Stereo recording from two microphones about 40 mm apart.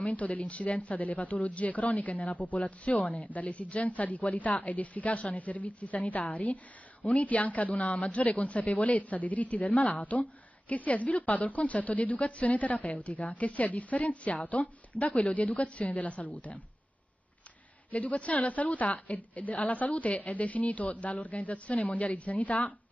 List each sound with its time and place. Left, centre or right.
0.1 s a woman's voice: left
17.9 s a woman's voice: left